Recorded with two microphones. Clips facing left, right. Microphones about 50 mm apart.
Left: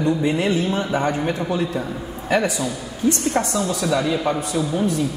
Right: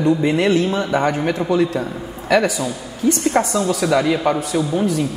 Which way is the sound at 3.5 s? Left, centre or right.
Right.